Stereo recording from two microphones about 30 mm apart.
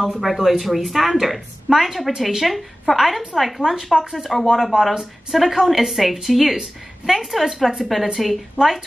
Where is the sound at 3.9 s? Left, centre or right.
Right.